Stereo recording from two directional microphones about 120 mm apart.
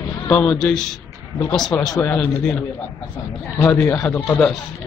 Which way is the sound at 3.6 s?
20° left (ahead or behind).